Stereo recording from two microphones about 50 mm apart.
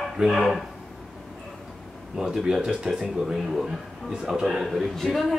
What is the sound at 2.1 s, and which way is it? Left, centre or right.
Speech, centre.